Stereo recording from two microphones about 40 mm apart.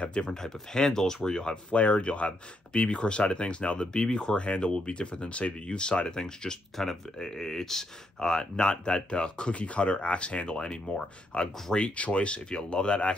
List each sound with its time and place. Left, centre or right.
0.0 s speech: left
0.3 s speech: centre
1.7 s speech: left